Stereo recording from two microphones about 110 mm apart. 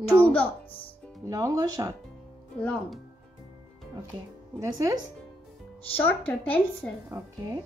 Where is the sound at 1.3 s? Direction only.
30° right (ahead or behind).